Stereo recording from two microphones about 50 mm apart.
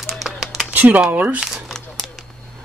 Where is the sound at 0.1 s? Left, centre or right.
Centre.